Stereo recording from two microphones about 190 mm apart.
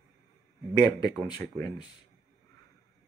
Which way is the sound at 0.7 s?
20° left (ahead or behind).